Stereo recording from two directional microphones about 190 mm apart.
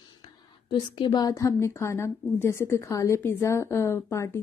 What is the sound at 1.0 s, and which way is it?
Speech, 20° left (ahead or behind).